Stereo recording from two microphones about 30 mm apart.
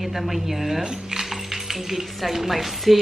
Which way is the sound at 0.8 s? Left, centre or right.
Right.